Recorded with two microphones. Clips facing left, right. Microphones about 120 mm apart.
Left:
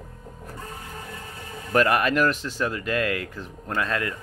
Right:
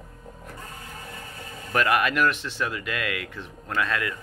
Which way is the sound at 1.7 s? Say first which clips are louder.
Left 2 dB; 40° left (ahead or behind).